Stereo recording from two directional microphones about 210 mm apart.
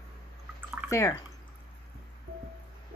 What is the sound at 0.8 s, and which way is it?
Speech, 15° left (ahead or behind).